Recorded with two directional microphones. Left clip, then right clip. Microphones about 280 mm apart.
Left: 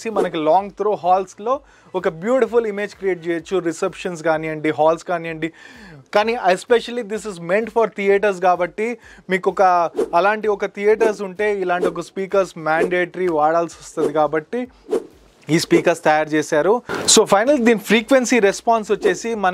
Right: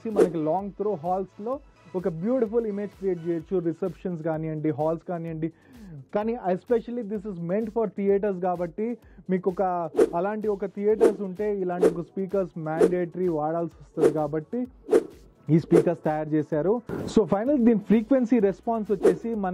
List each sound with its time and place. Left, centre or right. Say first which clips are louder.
0.0 s speech: left 4 dB; centre
9.7 s speech: left 7 dB; centre